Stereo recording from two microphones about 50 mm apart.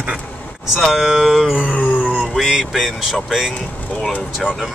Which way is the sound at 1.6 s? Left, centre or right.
Left.